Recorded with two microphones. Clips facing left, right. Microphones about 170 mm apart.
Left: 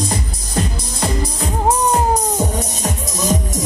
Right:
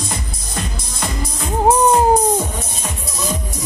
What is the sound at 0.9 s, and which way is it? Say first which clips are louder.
Music: left 4 dB; 35° left (ahead or behind).